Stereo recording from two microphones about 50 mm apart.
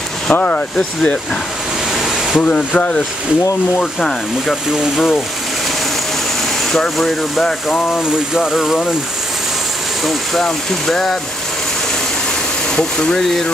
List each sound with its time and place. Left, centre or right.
0.3 s speech: left
2.0 s a sound: centre
2.4 s speech: left
6.7 s speech: centre
10.9 s speech: centre
12.7 s speech: centre
13.2 s speech: centre